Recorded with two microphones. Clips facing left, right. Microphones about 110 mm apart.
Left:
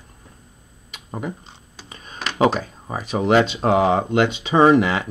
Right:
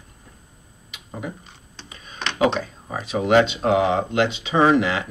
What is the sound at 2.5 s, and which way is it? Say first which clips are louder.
Speech: left 1 dB; 45° left (ahead or behind).